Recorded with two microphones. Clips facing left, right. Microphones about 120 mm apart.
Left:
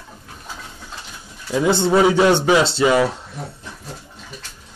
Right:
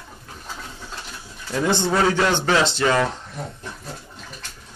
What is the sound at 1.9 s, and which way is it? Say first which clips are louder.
A man's voice: left 7 dB; 15° left (ahead or behind).